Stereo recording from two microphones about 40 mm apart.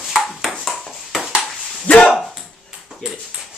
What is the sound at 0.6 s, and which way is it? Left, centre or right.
Ping, centre.